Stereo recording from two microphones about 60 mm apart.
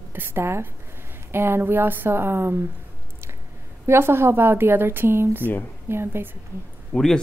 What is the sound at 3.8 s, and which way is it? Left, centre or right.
Speech, right.